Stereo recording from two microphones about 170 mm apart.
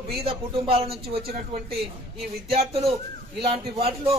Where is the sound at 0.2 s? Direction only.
35° right (ahead or behind).